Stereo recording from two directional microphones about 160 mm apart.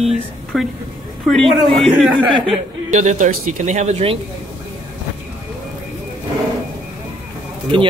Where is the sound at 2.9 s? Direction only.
45° right (ahead or behind).